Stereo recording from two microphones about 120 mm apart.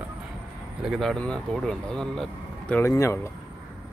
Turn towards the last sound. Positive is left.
turn(degrees=25)  # may be behind; listen again after turning